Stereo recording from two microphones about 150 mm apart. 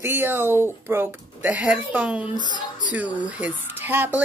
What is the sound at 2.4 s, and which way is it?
Speech, 30° left (ahead or behind).